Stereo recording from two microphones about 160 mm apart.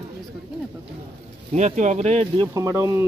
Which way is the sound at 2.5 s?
20° right (ahead or behind).